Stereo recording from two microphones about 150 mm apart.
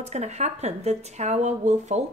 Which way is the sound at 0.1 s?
45° right (ahead or behind).